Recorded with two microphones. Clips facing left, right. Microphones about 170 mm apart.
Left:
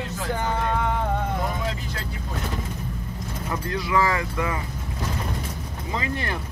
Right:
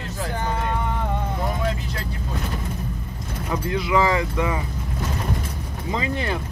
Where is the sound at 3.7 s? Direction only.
20° right (ahead or behind).